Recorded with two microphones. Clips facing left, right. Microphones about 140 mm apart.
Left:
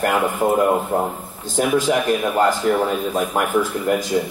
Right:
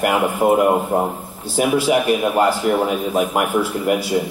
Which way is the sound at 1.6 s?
10° right (ahead or behind).